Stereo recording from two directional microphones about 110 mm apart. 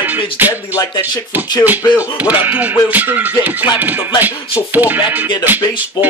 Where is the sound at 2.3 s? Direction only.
15° right (ahead or behind).